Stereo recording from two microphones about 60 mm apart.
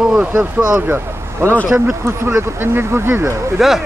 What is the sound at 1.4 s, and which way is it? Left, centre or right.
Speech, right.